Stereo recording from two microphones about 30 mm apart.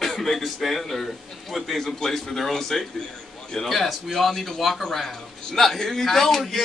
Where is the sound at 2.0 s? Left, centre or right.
Centre.